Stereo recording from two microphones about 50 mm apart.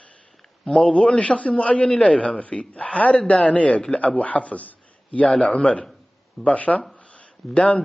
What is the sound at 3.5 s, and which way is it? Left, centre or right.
A man's voice, left.